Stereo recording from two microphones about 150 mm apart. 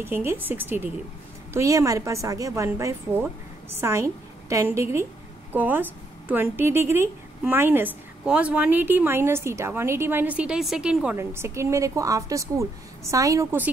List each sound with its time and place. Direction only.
0.0 s a woman's voice: 15° right (ahead or behind)